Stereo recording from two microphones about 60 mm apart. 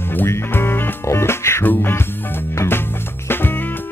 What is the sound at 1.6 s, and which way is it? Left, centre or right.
Music, left.